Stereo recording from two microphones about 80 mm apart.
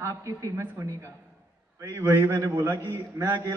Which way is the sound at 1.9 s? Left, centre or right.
Right.